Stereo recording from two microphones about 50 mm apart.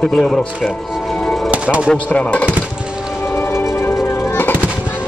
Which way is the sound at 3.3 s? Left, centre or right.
Left.